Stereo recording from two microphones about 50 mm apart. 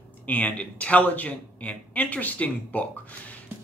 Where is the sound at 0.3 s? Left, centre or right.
Left.